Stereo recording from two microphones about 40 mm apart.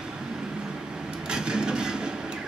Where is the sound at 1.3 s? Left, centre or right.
Centre.